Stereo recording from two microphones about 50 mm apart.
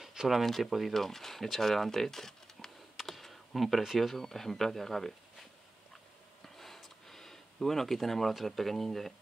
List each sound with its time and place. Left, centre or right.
0.0 s a sound: centre
0.4 s speech: centre
3.1 s computer keyboard: centre
3.8 s speech: centre
4.1 s speech: centre
6.4 s a sound: centre